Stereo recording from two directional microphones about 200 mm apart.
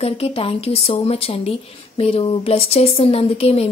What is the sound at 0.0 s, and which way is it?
Speech, 30° left (ahead or behind).